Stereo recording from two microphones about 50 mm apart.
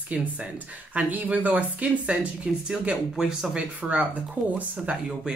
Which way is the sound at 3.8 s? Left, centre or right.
Right.